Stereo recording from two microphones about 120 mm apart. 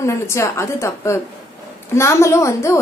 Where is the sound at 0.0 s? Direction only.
25° left (ahead or behind).